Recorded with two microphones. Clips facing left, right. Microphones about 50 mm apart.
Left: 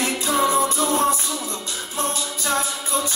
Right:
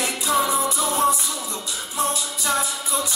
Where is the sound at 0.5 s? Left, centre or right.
Left.